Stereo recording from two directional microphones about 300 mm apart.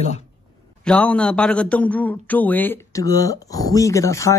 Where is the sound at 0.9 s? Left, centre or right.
Centre.